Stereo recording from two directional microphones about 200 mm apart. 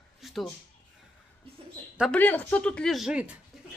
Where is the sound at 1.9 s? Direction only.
Centre (ahead or behind).